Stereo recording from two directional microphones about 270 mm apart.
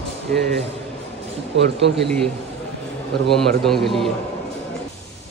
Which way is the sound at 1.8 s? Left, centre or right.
Right.